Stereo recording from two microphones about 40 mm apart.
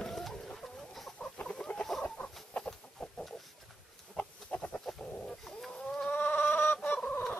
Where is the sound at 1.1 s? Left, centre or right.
Left.